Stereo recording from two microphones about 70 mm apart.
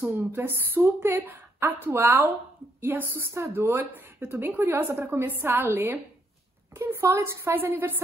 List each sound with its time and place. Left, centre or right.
0.0 s a woman's voice: right